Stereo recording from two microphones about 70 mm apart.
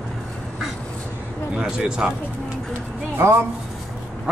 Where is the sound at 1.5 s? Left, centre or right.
Centre.